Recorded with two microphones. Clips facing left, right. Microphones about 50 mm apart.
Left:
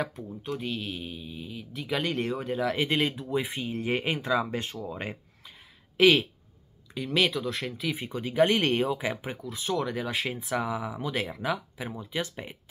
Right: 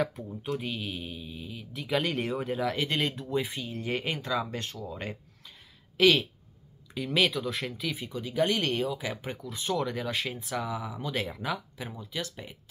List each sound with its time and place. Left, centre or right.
0.1 s speech: centre
2.7 s speech: centre
6.9 s speech: centre
7.9 s speech: left
9.1 s speech: centre
11.9 s speech: left